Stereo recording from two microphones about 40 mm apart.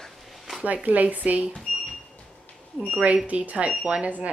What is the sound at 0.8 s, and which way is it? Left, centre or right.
Speech, right.